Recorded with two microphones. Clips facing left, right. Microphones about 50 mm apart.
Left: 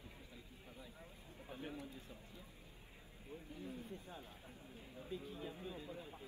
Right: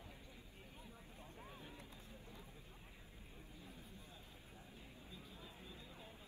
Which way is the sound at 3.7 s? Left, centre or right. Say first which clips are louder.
Left 8 dB; left.